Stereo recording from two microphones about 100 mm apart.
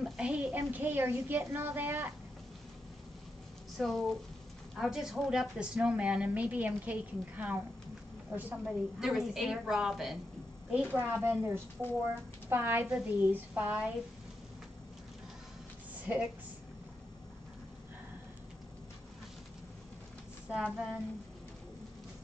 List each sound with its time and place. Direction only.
0.0 s a woman's voice: 10° right (ahead or behind)
3.7 s a woman's voice: centre (ahead or behind); by 7.5 s 15° right (ahead or behind)
8.6 s a woman's voice: centre (ahead or behind)
16.1 s a woman's voice: 15° right (ahead or behind)
20.6 s a woman's voice: centre (ahead or behind)